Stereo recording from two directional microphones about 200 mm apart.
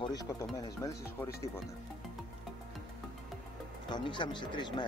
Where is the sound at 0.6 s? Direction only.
15° left (ahead or behind).